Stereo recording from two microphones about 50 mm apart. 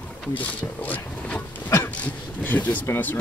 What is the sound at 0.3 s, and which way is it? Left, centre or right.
Speech, left.